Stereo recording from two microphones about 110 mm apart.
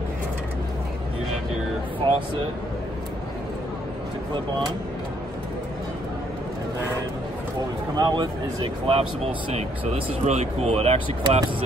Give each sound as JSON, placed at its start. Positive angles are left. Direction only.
{"t": 4.3, "sound": "speech", "side_deg": -45}
{"t": 7.9, "sound": "a man's voice", "side_deg": -40}
{"t": 8.8, "sound": "speech", "side_deg": -65}